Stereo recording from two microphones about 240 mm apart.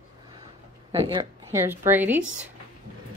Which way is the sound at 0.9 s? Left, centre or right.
Centre.